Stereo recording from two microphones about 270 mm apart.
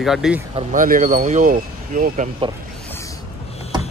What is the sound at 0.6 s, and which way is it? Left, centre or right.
Speech, right.